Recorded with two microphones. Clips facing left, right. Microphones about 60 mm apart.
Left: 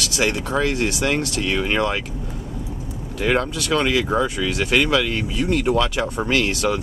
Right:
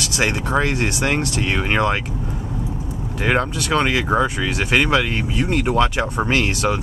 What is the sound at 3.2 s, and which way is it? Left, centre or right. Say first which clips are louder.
Speech: right 1 dB; right.